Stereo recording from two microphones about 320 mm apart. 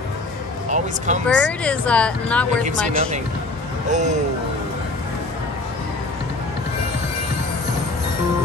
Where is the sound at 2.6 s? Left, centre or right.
Right.